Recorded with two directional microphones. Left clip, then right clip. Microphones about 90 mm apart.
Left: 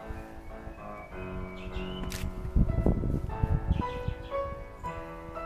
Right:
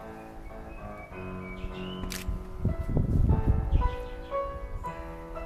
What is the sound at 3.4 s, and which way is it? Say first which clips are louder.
Music: right 1 dB; 35° left (ahead or behind).